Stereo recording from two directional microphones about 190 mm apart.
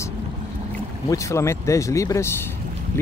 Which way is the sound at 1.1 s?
15° left (ahead or behind).